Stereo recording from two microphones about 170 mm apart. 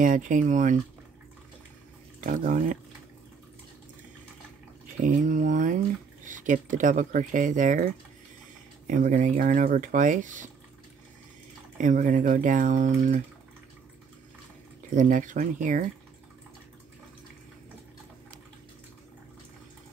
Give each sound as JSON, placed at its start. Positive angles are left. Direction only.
{"t": 0.0, "sound": "speech", "side_deg": -50}
{"t": 2.1, "sound": "speech", "side_deg": -50}
{"t": 5.0, "sound": "speech", "side_deg": -50}
{"t": 11.8, "sound": "speech", "side_deg": -45}
{"t": 15.0, "sound": "speech", "side_deg": -50}